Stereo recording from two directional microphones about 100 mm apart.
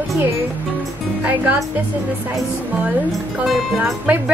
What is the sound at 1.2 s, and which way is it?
Speech, 15° right (ahead or behind).